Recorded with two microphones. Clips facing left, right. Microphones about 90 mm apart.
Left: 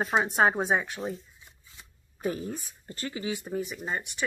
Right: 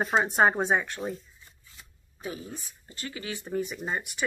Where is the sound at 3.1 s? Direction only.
20° left (ahead or behind).